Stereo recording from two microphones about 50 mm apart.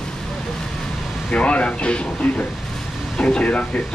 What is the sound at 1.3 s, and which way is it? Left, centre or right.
Speech, left.